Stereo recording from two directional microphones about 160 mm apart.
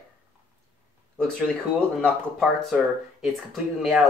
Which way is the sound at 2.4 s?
Centre (ahead or behind).